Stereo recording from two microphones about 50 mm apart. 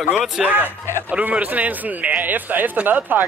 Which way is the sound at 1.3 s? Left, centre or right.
Right.